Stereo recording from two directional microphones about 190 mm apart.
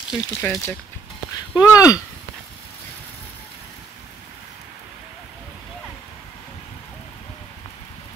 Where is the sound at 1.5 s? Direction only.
20° left (ahead or behind).